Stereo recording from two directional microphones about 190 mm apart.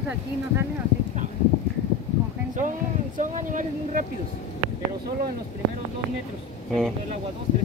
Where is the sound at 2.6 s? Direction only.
45° right (ahead or behind).